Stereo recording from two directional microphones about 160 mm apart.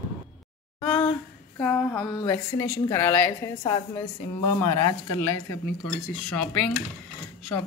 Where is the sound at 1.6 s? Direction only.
10° left (ahead or behind).